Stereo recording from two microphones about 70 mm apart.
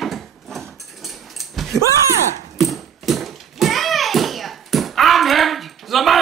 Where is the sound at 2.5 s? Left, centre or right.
Centre.